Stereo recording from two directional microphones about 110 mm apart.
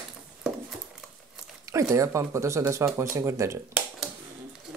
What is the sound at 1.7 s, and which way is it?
Speech, 30° right (ahead or behind).